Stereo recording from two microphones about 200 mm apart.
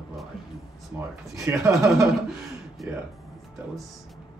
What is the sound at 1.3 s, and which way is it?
Speech, 15° right (ahead or behind).